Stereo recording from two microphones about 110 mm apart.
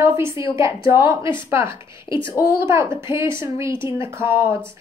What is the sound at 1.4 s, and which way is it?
A woman's voice, 25° right (ahead or behind).